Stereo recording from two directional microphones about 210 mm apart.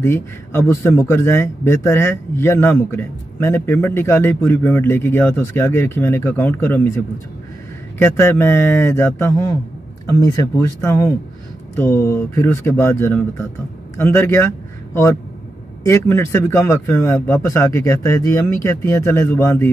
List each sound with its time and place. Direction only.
0.0 s speech: 10° left (ahead or behind)
8.0 s speech: 10° left (ahead or behind)
15.9 s speech: 10° left (ahead or behind)